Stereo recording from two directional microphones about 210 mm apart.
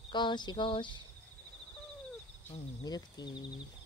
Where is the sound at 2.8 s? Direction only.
20° left (ahead or behind).